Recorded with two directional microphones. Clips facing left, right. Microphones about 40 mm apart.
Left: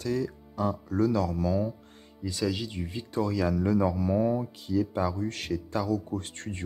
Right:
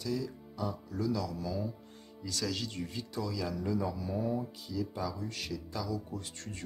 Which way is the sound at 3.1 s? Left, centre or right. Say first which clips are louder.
Left 11 dB; left.